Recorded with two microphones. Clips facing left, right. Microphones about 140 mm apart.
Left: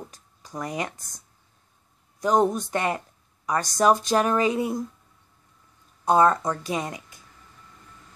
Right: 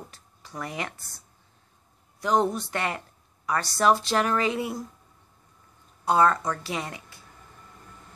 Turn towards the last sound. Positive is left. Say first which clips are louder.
# left 4 dB
turn(degrees=20)  # may be behind; listen again after turning